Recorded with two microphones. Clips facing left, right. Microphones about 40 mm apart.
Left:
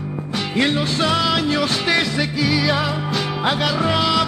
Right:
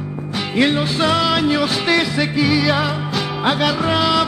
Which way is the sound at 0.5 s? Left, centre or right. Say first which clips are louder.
Right 3 dB; centre.